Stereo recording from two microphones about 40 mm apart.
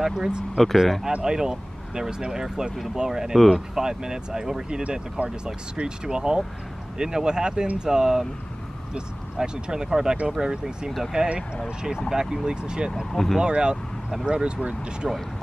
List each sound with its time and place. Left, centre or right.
0.0 s speech: centre
0.7 s speech: centre
1.2 s speech: centre
9.4 s speech: centre
13.1 s speech: centre
13.4 s speech: right